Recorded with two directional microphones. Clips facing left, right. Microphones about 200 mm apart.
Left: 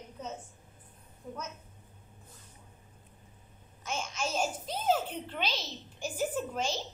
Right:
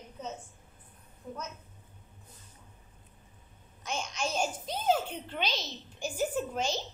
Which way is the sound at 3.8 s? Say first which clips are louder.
Right 1 dB; 5° left (ahead or behind).